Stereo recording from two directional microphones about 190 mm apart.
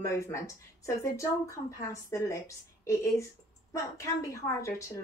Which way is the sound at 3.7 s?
15° left (ahead or behind).